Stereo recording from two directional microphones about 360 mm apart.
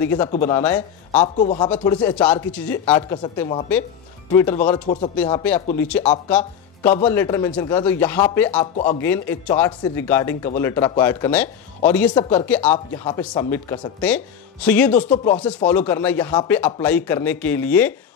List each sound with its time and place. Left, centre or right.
0.0 s speech: centre
1.2 s a man's voice: centre
1.8 s speech: centre
12.7 s speech: centre